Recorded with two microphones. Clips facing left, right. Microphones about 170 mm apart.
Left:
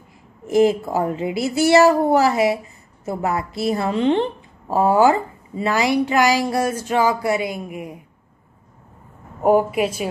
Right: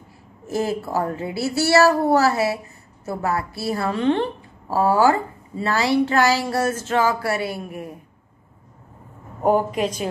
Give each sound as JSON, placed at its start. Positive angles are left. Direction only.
{"t": 0.5, "sound": "a woman's voice", "side_deg": 15}
{"t": 9.4, "sound": "a woman's voice", "side_deg": 5}